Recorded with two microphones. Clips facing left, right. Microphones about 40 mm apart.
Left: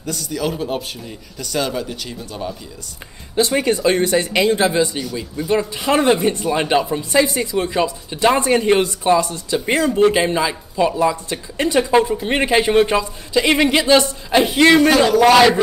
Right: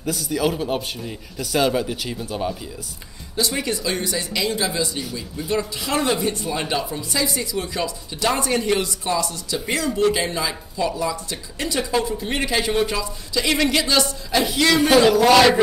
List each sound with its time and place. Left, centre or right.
0.0 s a man's voice: centre
3.3 s speech: left
15.1 s a man's voice: centre